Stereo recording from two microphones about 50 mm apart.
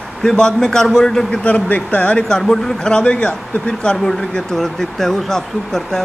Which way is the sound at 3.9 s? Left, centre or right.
Centre.